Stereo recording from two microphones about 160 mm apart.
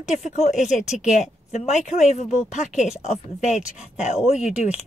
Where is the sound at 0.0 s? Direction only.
45° left (ahead or behind).